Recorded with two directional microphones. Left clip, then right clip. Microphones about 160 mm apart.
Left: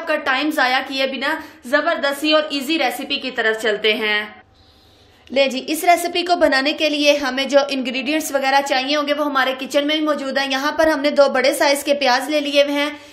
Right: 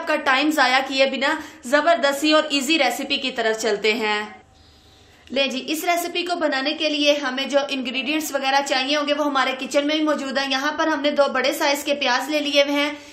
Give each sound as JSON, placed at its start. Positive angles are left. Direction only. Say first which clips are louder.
{"t": 0.0, "sound": "a woman's voice", "louder": "even", "side_deg": 0}
{"t": 5.3, "sound": "a woman's voice", "louder": "left 4 dB", "side_deg": 25}